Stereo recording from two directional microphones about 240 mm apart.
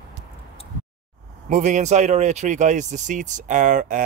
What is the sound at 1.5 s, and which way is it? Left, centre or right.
Speech, right.